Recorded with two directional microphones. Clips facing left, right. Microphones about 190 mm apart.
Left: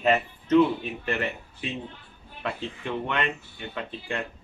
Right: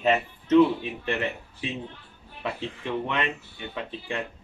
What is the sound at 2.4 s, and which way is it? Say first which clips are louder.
Speech: even; centre (ahead or behind).